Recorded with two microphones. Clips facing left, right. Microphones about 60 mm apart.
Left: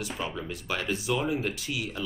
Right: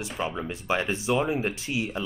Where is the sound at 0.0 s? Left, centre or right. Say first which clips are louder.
Right 3 dB; right.